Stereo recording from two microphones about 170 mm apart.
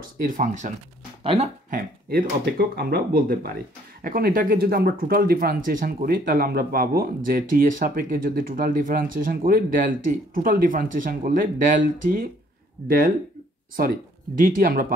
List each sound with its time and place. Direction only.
0.0 s speech: 50° right (ahead or behind)
1.2 s speech: 35° right (ahead or behind)
1.7 s speech: 55° right (ahead or behind)